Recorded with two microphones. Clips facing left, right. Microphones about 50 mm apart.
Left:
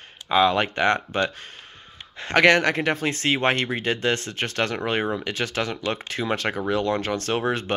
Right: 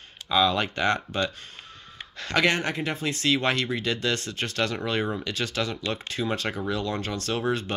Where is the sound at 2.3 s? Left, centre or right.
Left.